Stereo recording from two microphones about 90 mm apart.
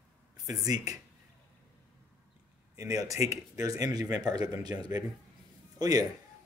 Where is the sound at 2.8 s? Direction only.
40° right (ahead or behind).